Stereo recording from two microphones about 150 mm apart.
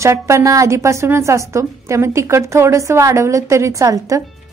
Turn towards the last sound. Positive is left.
turn(degrees=-20)  # may be behind; listen again after turning